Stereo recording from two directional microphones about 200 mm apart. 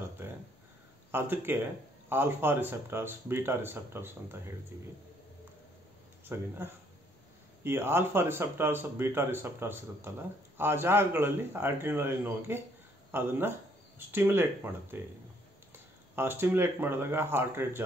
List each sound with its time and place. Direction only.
1.1 s speech: 10° right (ahead or behind)
6.2 s speech: 10° right (ahead or behind)
16.2 s speech: 10° right (ahead or behind)